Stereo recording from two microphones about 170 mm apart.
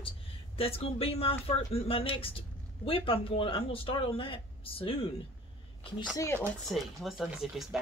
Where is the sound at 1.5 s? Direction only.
35° left (ahead or behind).